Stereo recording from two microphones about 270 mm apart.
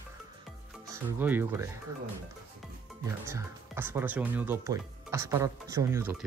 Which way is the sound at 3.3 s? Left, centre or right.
Centre.